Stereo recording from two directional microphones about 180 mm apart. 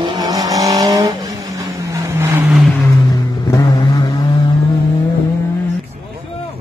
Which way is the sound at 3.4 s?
20° left (ahead or behind).